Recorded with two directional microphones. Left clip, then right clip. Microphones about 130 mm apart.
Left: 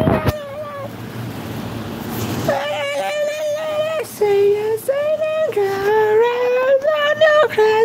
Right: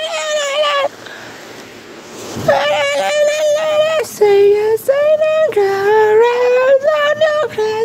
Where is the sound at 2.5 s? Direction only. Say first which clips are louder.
Right 8 dB; 45° right (ahead or behind); by 7.1 s 25° right (ahead or behind).